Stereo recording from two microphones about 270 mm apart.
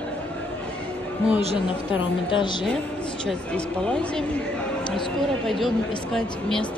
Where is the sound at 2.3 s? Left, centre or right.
Centre.